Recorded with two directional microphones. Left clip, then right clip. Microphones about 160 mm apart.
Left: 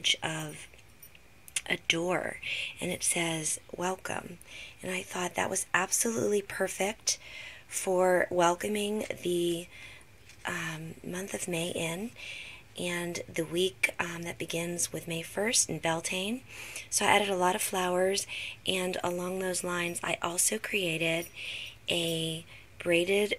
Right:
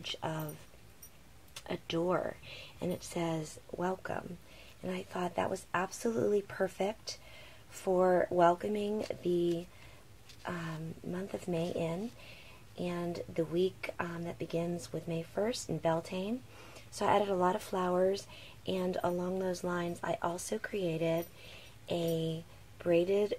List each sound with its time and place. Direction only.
0.0 s speech: 5° left (ahead or behind)
1.7 s speech: 10° left (ahead or behind)
2.4 s speech: 5° left (ahead or behind)
7.9 s speech: 20° left (ahead or behind)
8.5 s speech: 10° left (ahead or behind)
18.6 s speech: 5° left (ahead or behind)